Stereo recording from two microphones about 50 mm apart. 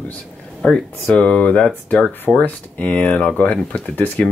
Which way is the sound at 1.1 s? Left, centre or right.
Left.